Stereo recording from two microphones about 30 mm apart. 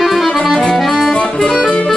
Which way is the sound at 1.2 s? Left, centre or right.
Left.